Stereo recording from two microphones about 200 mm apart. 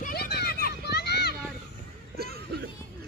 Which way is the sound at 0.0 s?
50° left (ahead or behind).